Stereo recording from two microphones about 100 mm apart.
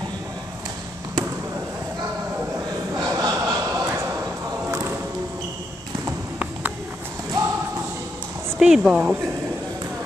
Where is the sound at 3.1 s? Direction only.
35° right (ahead or behind).